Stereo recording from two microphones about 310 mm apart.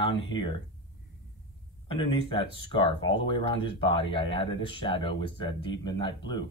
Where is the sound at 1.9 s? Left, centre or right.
Centre.